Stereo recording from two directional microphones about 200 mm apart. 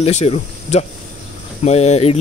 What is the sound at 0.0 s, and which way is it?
Speech, 35° left (ahead or behind).